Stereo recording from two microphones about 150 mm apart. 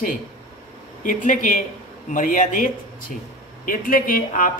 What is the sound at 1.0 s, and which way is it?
Speech, 60° left (ahead or behind).